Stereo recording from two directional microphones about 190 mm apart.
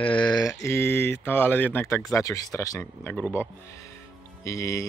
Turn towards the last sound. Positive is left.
turn(degrees=15)  # may be behind; listen again after turning